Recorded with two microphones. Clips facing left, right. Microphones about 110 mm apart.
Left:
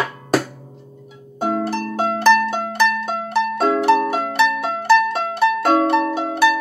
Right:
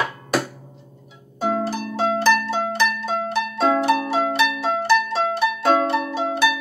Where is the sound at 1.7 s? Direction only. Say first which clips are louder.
Left 1 dB; 55° left (ahead or behind).